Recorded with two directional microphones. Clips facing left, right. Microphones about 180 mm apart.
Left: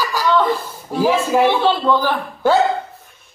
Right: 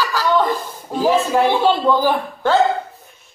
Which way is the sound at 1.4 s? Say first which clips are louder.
Even; 10° right (ahead or behind).